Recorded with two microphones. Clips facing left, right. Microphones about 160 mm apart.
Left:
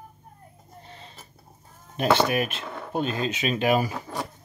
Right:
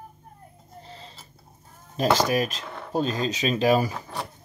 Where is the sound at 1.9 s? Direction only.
35° right (ahead or behind).